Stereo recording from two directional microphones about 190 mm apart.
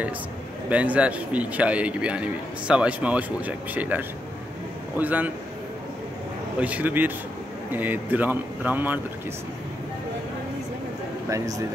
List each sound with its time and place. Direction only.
0.7 s speech: 5° right (ahead or behind)
6.6 s speech: 10° right (ahead or behind)
11.2 s speech: 15° right (ahead or behind)